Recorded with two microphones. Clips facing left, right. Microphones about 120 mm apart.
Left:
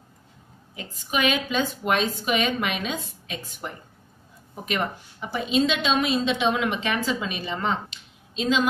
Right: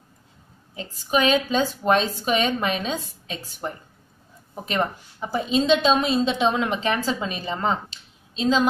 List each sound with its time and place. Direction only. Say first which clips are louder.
0.7 s a woman's voice: right 5 dB; 30° right (ahead or behind)
4.6 s a woman's voice: right 2 dB; 35° right (ahead or behind)